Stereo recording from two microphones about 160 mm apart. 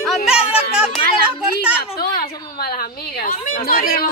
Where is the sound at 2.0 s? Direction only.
70° left (ahead or behind).